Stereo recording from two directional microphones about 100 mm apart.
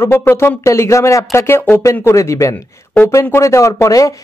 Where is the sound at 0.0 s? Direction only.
25° left (ahead or behind).